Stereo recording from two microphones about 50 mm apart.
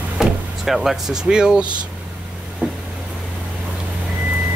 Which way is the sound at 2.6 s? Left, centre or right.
Right.